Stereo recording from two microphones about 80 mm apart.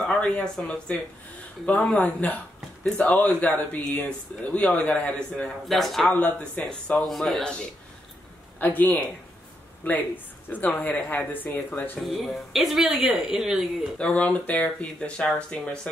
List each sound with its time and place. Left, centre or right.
0.0 s a sound: centre
0.6 s speech: centre
5.7 s speech: centre
6.1 s speech: centre
7.0 s speech: centre
8.5 s speech: left
12.1 s speech: centre
13.9 s speech: centre